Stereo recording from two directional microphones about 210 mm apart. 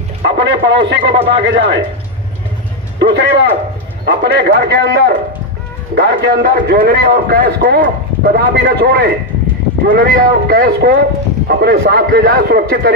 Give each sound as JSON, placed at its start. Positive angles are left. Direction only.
{"t": 0.2, "sound": "a man's voice", "side_deg": -55}
{"t": 3.0, "sound": "a man's voice", "side_deg": -55}